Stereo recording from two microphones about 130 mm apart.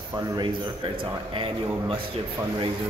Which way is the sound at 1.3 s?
40° right (ahead or behind).